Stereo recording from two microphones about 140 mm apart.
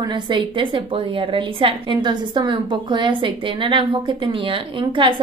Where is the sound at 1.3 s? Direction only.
35° right (ahead or behind).